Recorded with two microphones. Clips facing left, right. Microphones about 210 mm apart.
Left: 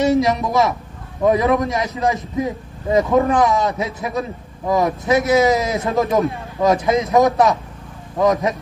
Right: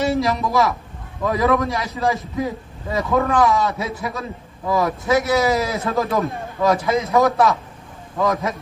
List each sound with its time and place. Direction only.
0.0 s a man's voice: 15° left (ahead or behind)